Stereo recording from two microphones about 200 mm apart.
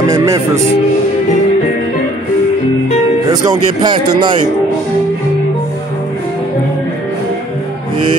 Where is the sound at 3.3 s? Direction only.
20° right (ahead or behind).